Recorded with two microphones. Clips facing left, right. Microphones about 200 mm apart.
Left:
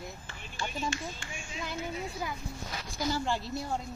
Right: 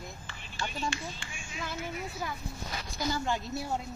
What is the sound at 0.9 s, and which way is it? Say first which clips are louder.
Speech: left 1 dB; 45° left (ahead or behind).